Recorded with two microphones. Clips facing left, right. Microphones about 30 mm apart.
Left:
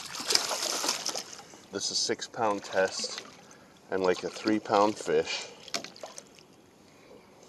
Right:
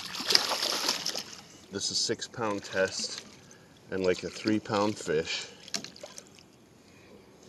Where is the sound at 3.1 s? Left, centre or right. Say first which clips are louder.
Left 2 dB; centre.